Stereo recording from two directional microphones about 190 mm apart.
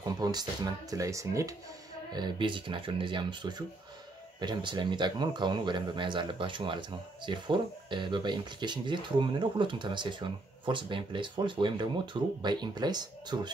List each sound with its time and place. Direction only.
0.0 s speech: 20° right (ahead or behind)